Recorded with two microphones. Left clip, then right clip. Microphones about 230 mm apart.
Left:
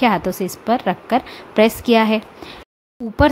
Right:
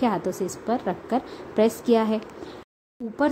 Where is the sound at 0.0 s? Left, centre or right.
Left.